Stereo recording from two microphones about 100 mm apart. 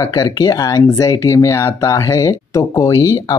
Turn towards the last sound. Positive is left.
turn(degrees=40)  # may be behind; listen again after turning